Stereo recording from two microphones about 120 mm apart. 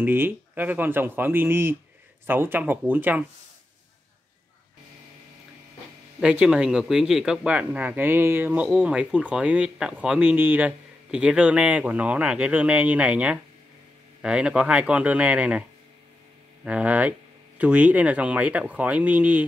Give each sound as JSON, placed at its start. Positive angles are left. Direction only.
{"t": 0.0, "sound": "speech", "side_deg": -15}
{"t": 6.2, "sound": "speech", "side_deg": -10}
{"t": 16.6, "sound": "speech", "side_deg": -10}